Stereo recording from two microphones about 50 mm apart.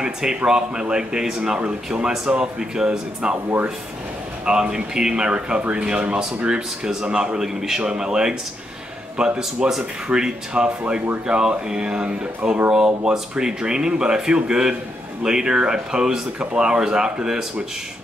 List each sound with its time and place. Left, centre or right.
0.0 s a man's voice: centre
4.5 s a man's voice: centre